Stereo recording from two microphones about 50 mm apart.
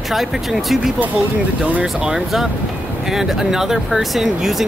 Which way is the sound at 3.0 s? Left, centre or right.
Centre.